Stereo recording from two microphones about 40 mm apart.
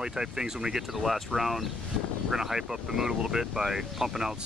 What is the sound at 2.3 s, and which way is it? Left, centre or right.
Speech, centre.